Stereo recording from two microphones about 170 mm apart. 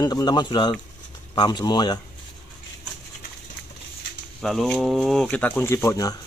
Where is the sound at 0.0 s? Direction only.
25° left (ahead or behind).